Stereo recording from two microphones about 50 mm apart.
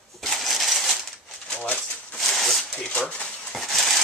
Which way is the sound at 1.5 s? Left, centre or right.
Left.